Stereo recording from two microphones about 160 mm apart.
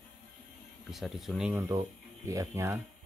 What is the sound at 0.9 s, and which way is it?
Speech, centre (ahead or behind).